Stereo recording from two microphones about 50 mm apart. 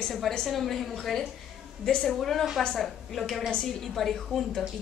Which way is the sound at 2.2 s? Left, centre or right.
Centre.